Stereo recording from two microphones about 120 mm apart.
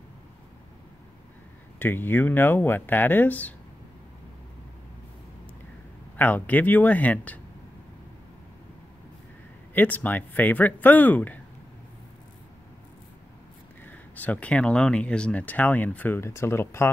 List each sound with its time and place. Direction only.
1.8 s speech: 15° left (ahead or behind)
6.1 s speech: 15° left (ahead or behind)
9.8 s speech: 15° left (ahead or behind)
14.1 s speech: 10° left (ahead or behind)